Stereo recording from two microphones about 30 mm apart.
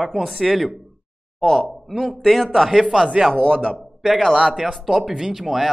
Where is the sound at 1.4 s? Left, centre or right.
Centre.